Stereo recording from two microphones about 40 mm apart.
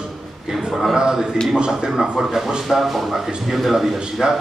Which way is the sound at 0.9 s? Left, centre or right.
Centre.